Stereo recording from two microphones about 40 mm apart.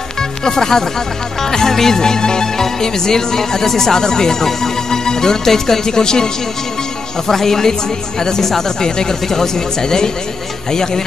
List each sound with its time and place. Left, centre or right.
0.5 s speech: centre